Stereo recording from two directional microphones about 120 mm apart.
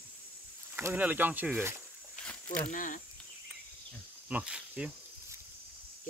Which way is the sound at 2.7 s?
90° left.